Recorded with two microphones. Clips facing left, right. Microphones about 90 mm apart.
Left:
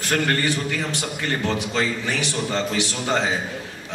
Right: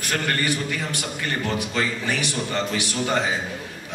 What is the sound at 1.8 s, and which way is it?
A man's voice, 20° left (ahead or behind).